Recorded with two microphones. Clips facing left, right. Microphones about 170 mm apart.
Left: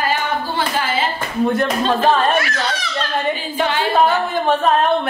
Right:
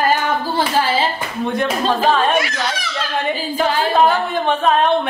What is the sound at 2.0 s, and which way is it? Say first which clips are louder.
A woman's voice: even; 10° right (ahead or behind).